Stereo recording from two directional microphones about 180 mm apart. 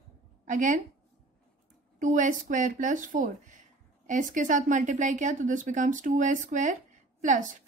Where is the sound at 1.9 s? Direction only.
45° right (ahead or behind).